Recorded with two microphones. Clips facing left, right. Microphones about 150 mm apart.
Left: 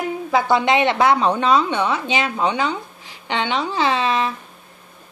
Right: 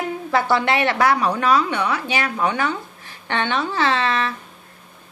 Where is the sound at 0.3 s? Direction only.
15° left (ahead or behind).